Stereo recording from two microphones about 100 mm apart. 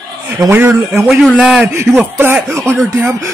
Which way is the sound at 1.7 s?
25° right (ahead or behind).